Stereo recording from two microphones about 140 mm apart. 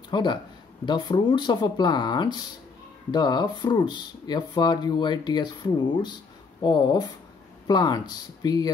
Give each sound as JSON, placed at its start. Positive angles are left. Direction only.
{"t": 0.1, "sound": "speech", "side_deg": 35}